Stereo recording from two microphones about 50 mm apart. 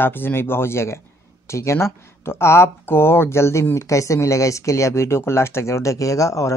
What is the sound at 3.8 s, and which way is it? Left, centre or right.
Speech, left.